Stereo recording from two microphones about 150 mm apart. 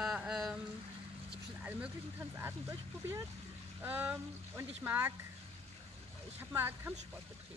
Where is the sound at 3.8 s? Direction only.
10° right (ahead or behind).